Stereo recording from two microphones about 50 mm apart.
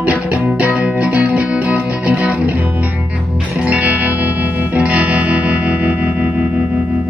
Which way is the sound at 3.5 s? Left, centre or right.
Right.